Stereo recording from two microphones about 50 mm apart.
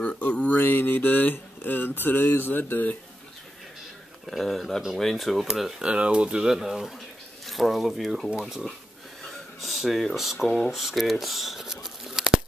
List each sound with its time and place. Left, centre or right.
0.0 s speech: left
0.6 s a sound: left
4.3 s speech: centre
5.8 s speech: centre
9.6 s speech: centre
11.6 s a sound: centre